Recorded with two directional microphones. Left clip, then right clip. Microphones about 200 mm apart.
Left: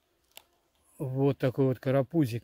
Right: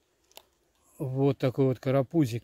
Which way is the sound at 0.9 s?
5° left (ahead or behind).